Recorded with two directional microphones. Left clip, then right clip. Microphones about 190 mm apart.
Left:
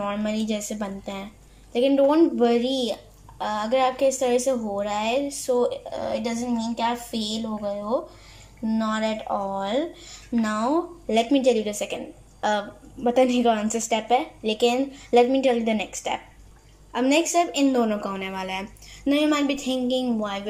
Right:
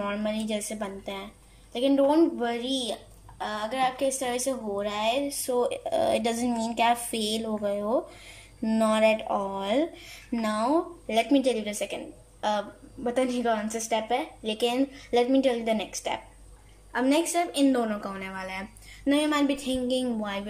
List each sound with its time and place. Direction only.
0.0 s a woman's voice: centre (ahead or behind)
19.1 s speech: centre (ahead or behind)